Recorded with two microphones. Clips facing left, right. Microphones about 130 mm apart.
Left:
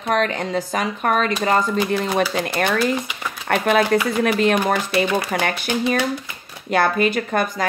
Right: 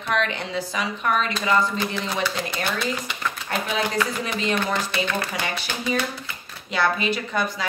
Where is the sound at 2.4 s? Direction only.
65° left (ahead or behind).